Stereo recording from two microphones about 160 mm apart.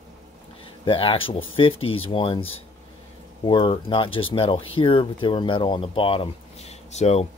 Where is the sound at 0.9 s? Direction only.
35° left (ahead or behind).